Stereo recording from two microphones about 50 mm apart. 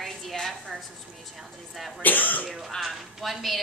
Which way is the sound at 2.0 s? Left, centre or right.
Left.